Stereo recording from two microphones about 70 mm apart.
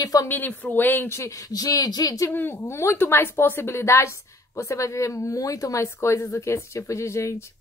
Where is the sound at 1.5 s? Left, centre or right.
Left.